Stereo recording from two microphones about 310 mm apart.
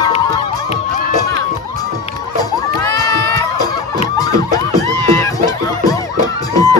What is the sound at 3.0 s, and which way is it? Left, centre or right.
Music, centre.